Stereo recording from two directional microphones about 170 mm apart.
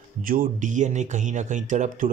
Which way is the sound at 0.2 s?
55° right (ahead or behind).